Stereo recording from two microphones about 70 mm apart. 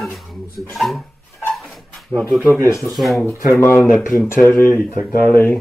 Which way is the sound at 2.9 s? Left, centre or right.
Centre.